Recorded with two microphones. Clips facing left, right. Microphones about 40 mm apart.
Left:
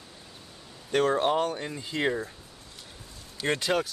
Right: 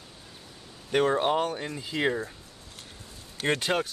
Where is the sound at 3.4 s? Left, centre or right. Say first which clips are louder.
Even; centre.